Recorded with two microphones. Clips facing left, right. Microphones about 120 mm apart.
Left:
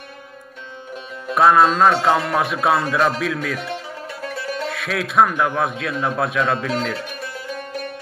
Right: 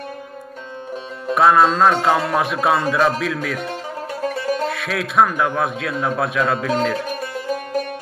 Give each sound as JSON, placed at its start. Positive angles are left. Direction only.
{"t": 1.3, "sound": "a man's voice", "side_deg": 0}
{"t": 3.6, "sound": "music", "side_deg": -45}
{"t": 4.6, "sound": "a man's voice", "side_deg": 0}
{"t": 7.1, "sound": "music", "side_deg": -45}